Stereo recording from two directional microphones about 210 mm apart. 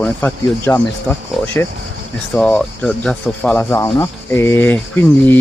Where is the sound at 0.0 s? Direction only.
10° left (ahead or behind).